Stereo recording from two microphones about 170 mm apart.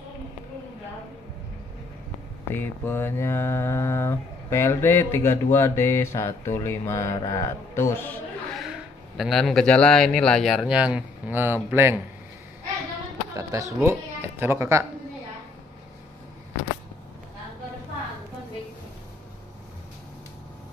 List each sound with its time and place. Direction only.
2.5 s mantra: 15° left (ahead or behind)
8.5 s speech: centre (ahead or behind)
13.4 s speech: 20° right (ahead or behind)